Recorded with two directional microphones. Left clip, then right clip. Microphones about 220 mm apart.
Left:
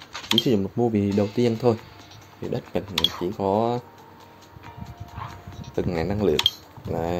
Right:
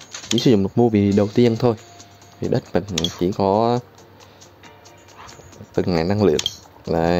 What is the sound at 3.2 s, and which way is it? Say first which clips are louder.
Speech: right 5 dB; 25° right (ahead or behind).